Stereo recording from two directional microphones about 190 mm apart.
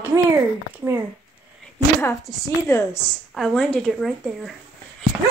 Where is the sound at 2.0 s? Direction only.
15° left (ahead or behind).